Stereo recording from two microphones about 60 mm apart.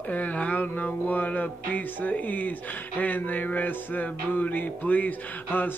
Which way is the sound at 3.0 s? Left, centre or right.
Left.